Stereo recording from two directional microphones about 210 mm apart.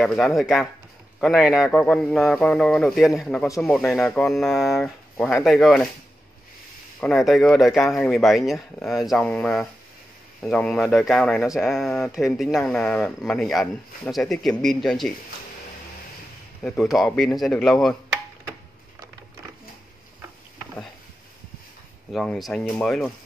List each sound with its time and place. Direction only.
0.0 s speech: centre (ahead or behind)
7.0 s speech: centre (ahead or behind)
16.6 s speech: centre (ahead or behind)
22.1 s speech: 5° left (ahead or behind)